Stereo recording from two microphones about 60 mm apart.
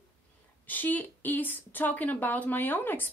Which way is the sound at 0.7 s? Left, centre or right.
Left.